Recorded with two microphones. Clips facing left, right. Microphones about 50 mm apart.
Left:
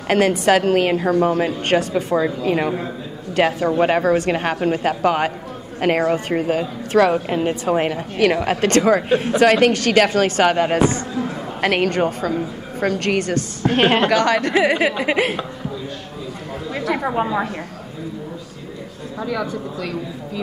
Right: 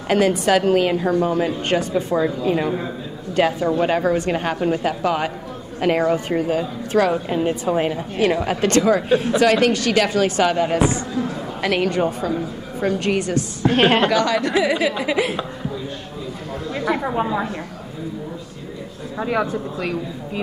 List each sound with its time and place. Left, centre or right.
0.1 s a woman's voice: left
13.7 s a woman's voice: centre
14.0 s a woman's voice: left
19.1 s speech: right